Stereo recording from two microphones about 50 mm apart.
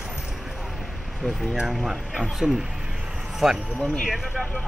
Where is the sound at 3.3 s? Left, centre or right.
Centre.